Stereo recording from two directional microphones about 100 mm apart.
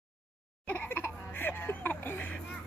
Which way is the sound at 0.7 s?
20° left (ahead or behind).